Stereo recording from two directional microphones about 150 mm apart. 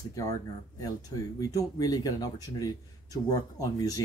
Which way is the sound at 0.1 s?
25° left (ahead or behind).